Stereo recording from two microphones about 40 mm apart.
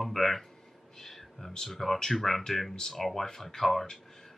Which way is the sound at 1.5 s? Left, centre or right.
Centre.